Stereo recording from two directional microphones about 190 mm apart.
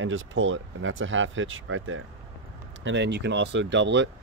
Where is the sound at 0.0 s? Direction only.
90° right.